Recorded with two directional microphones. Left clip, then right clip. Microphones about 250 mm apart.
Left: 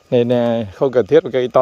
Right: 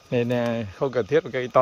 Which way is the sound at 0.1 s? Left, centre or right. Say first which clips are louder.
Left 9 dB; left.